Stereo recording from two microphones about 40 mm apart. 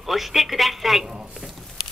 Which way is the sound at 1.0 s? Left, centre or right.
Centre.